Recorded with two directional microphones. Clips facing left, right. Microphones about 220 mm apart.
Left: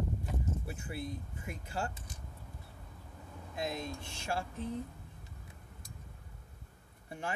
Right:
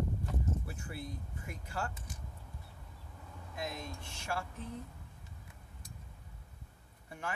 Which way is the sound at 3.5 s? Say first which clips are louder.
Left 4 dB; 25° left (ahead or behind).